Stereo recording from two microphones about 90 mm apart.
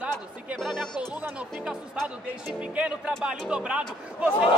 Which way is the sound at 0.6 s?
Centre (ahead or behind).